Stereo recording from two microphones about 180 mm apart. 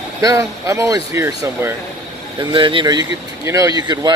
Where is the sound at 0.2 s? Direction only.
20° right (ahead or behind).